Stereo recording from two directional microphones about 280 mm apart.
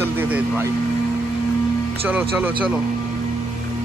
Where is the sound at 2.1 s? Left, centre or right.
Centre.